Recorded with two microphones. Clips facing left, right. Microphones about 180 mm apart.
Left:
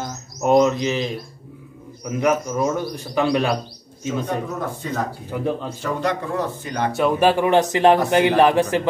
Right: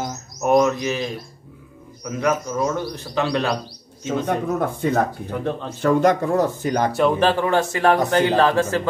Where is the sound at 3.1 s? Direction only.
15° left (ahead or behind).